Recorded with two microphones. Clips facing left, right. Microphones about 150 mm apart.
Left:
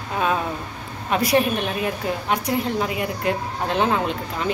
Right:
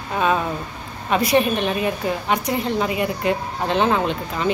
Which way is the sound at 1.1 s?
5° left (ahead or behind).